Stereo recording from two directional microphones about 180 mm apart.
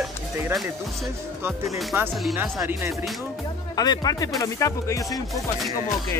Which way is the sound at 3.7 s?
20° left (ahead or behind).